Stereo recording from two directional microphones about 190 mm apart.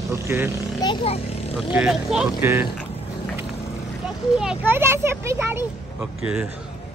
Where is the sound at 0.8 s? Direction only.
30° left (ahead or behind).